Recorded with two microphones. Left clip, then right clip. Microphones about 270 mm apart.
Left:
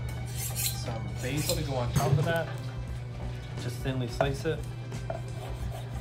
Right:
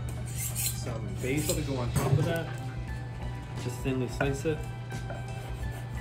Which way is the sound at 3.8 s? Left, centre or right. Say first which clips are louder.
Left 1 dB; left.